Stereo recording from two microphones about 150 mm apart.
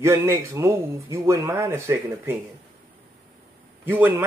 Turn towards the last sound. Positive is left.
turn(degrees=-15)  # may be behind; listen again after turning